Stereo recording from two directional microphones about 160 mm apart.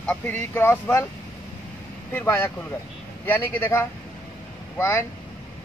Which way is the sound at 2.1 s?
15° left (ahead or behind).